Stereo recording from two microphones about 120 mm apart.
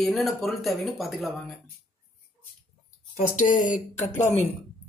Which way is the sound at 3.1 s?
90° left.